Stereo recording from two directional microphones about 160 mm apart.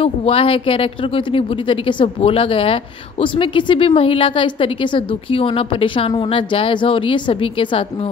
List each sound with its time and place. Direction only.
0.0 s speech: 35° left (ahead or behind)